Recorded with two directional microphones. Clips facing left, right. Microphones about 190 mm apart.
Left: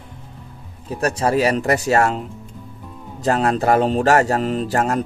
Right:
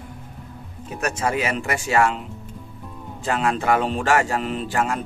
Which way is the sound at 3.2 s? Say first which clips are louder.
Left 4 dB; 40° left (ahead or behind).